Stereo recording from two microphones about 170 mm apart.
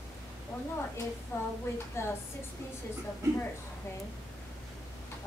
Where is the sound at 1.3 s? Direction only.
15° left (ahead or behind).